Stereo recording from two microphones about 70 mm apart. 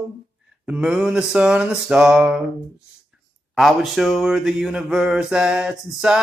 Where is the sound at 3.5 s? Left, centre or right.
Centre.